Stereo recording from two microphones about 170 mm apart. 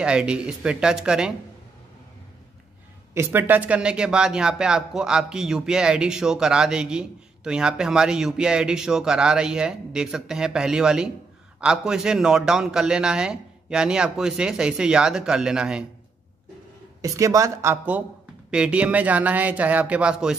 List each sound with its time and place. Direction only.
0.0 s speech: 5° right (ahead or behind)
3.2 s speech: 15° right (ahead or behind)
17.0 s a man's voice: 20° right (ahead or behind)